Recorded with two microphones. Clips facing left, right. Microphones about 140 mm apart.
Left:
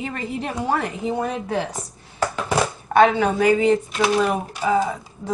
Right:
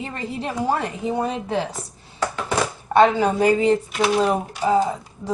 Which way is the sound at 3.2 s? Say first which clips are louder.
Even; 35° right (ahead or behind).